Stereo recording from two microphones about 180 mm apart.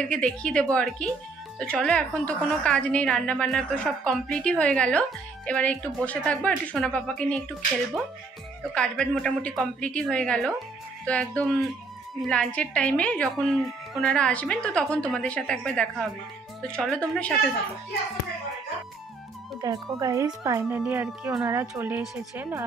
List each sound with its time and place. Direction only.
0.0 s a woman's voice: 5° left (ahead or behind)
8.7 s a woman's voice: 5° left (ahead or behind)
19.6 s speech: 20° right (ahead or behind)